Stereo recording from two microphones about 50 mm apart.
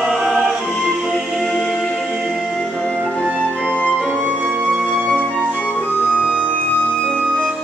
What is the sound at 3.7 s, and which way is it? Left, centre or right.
Music, left.